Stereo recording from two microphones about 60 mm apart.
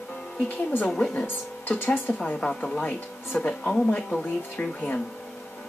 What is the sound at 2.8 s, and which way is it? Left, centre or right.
Speech, centre.